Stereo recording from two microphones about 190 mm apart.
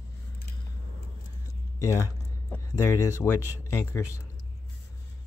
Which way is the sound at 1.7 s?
15° left (ahead or behind).